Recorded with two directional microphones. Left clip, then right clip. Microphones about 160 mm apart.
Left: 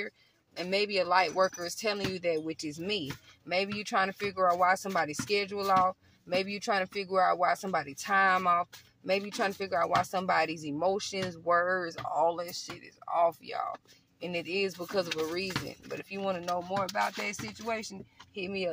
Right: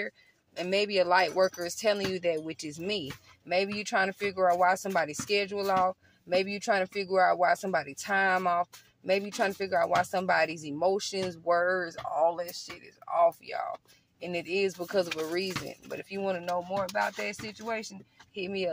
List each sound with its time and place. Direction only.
0.6 s speech: 15° right (ahead or behind)
11.5 s speech: 20° right (ahead or behind)